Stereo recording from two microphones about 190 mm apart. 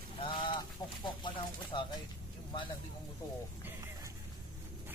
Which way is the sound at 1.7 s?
25° left (ahead or behind).